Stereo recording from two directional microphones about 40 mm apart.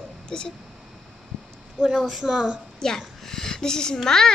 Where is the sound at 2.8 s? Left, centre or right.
Centre.